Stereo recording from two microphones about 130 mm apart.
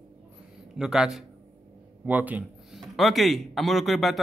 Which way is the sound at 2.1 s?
10° right (ahead or behind).